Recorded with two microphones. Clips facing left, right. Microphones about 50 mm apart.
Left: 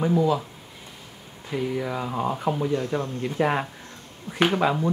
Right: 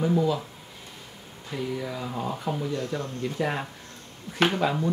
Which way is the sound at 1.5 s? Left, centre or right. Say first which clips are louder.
Left 4 dB; left.